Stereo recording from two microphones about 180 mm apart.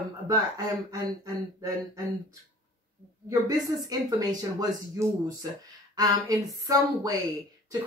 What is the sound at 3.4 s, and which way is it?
A woman's voice, 20° right (ahead or behind).